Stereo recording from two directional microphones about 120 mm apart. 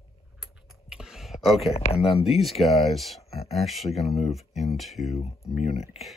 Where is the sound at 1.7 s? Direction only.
55° left (ahead or behind).